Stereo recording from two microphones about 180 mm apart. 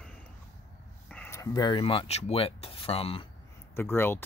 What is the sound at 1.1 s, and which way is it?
Speech, 10° left (ahead or behind).